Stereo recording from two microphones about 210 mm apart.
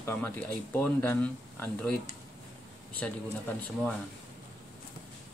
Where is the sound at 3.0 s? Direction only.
5° left (ahead or behind).